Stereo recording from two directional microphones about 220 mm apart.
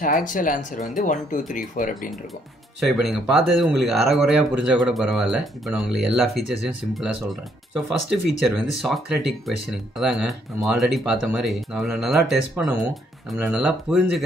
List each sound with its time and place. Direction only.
0.0 s speech: 35° left (ahead or behind)
2.8 s speech: centre (ahead or behind)